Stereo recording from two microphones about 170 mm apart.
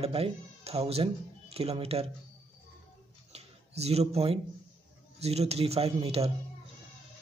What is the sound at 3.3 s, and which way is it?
Speech, 40° right (ahead or behind).